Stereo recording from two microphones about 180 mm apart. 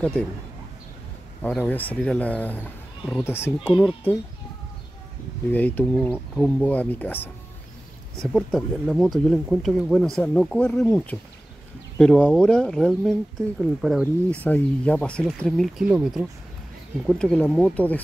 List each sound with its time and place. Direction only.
1.4 s speech: 10° left (ahead or behind)
3.6 s speech: 5° right (ahead or behind)
5.5 s speech: 10° left (ahead or behind)